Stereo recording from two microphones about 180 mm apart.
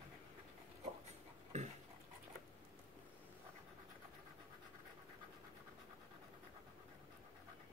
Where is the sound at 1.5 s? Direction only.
40° right (ahead or behind).